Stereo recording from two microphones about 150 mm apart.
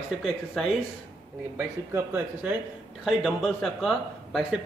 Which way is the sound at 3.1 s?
Centre (ahead or behind).